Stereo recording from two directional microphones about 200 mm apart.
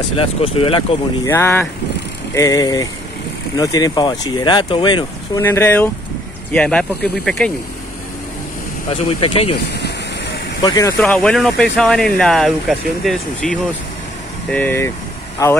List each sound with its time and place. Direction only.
0.2 s speech: 30° left (ahead or behind)
1.3 s speech: 10° left (ahead or behind)
5.4 s speech: 10° left (ahead or behind)
8.9 s speech: 30° left (ahead or behind)
9.7 s vehicle: 55° left (ahead or behind)
10.6 s speech: 20° left (ahead or behind)
11.0 s speech: 5° left (ahead or behind)